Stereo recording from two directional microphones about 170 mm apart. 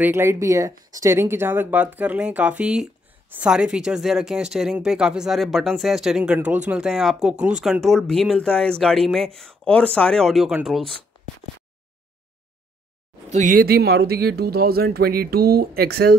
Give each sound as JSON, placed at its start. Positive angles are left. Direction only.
{"t": 0.0, "sound": "speech", "side_deg": -15}
{"t": 13.3, "sound": "speech", "side_deg": -50}